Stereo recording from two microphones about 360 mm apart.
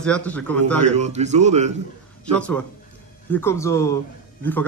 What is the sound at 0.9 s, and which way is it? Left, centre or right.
Speech, centre.